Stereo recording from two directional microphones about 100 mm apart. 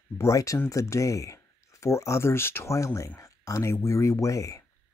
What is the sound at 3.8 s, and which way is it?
Speech, 30° left (ahead or behind).